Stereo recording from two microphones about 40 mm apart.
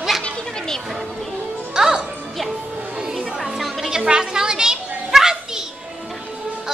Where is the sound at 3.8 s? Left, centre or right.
Centre.